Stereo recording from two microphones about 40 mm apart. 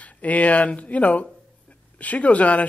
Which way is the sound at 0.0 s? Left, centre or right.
Left.